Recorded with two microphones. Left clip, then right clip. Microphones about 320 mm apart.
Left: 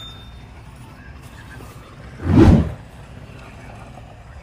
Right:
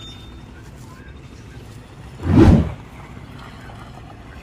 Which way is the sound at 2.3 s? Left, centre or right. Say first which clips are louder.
Even; centre.